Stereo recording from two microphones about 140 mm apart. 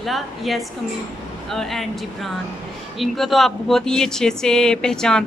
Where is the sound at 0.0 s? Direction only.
Centre (ahead or behind).